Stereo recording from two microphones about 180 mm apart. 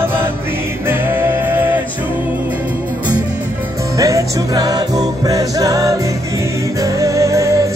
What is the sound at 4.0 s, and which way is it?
Music, 20° right (ahead or behind).